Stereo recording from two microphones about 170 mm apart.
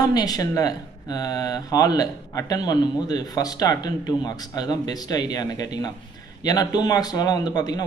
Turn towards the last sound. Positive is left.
turn(degrees=25)  # may be behind; listen again after turning